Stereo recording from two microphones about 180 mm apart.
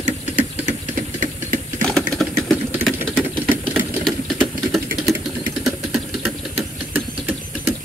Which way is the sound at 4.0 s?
Centre (ahead or behind).